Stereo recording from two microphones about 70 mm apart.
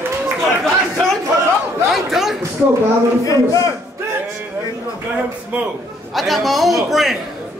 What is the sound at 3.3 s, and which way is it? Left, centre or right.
Speech, left.